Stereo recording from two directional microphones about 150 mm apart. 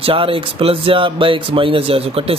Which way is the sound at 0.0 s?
35° right (ahead or behind).